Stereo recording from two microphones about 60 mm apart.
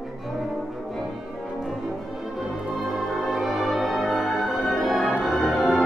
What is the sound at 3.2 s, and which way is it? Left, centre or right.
Music, centre.